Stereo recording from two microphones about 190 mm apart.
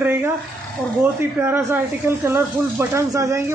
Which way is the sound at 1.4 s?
10° right (ahead or behind).